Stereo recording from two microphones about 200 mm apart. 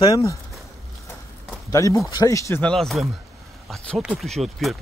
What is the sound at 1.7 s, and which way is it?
Speech, 15° left (ahead or behind).